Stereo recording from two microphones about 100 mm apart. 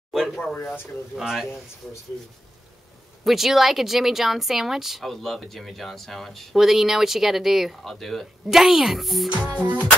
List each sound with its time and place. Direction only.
0.1 s speech: centre (ahead or behind)
0.6 s speech: 20° left (ahead or behind)
1.1 s speech: 5° right (ahead or behind)
3.3 s speech: centre (ahead or behind)
9.3 s music: 15° right (ahead or behind)